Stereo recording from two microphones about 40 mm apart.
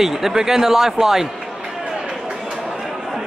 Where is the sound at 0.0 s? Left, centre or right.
Centre.